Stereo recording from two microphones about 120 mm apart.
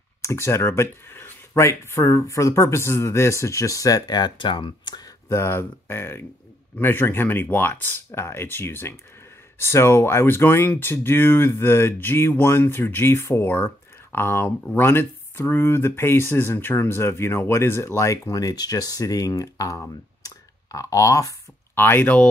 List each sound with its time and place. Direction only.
0.2 s speech: 20° left (ahead or behind)
21.8 s speech: 15° left (ahead or behind)